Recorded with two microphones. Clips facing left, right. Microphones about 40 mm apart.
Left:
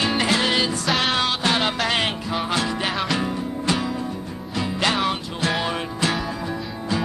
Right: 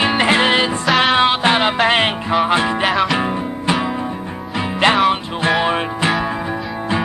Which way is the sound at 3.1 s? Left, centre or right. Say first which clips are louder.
Right 5 dB; right.